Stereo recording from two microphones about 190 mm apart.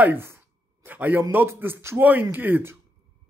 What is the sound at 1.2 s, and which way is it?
Speech, 10° right (ahead or behind).